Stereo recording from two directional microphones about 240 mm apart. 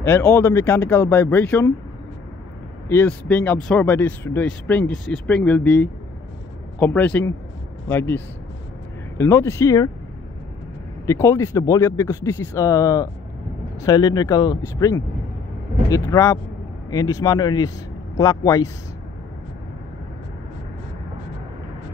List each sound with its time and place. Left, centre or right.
0.0 s speech: centre
2.9 s speech: centre
9.2 s speech: centre
11.1 s speech: centre
16.1 s speech: centre